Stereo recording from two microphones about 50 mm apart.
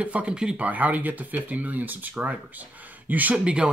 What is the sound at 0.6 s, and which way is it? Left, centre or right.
Speech, right.